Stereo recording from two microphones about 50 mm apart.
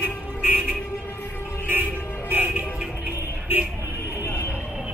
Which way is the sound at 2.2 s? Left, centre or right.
Right.